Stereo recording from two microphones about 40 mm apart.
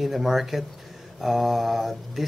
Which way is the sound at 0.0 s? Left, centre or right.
Centre.